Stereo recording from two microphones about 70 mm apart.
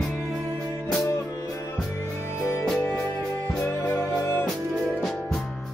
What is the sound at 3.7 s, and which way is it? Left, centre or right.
Music, left.